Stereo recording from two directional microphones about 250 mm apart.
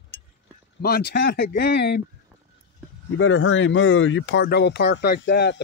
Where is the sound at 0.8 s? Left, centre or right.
Left.